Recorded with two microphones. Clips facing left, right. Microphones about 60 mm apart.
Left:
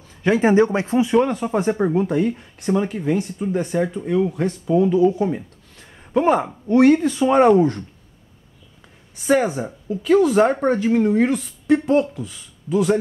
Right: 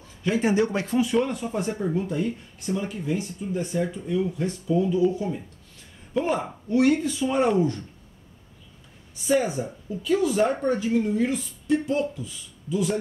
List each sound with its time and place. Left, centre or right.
0.2 s speech: left
0.6 s speech: left
1.2 s speech: left
9.2 s speech: left